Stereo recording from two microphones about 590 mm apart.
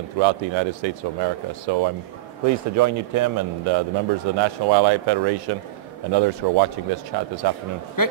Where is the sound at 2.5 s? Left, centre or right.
Right.